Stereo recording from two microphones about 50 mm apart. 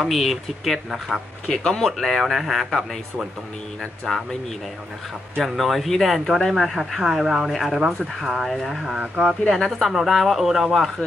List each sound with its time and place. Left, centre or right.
0.0 s speech: centre
1.5 s speech: centre
1.9 s speech: centre
4.1 s speech: centre
5.4 s speech: centre
7.0 s speech: centre
8.8 s speech: centre
9.5 s speech: centre